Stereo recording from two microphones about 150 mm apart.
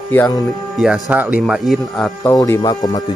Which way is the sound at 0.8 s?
10° right (ahead or behind).